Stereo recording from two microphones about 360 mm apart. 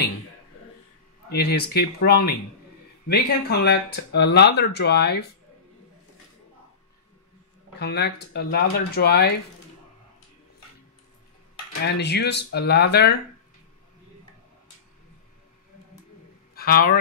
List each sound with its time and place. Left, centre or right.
1.3 s speech: left
7.8 s speech: left
11.8 s speech: left
16.5 s a man's voice: left